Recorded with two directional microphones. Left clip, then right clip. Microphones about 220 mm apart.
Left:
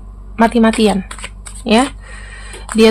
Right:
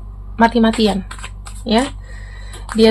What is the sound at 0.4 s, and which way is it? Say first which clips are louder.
A woman's voice: left 2 dB; 20° left (ahead or behind).